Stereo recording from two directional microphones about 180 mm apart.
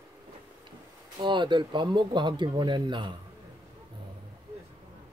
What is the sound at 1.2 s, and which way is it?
Speech, 25° right (ahead or behind).